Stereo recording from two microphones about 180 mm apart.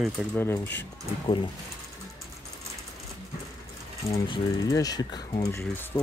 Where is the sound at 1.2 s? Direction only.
30° left (ahead or behind).